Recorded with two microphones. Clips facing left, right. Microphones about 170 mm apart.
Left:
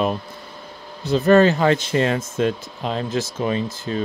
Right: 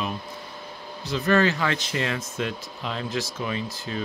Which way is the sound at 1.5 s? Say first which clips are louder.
Left 8 dB; 35° left (ahead or behind).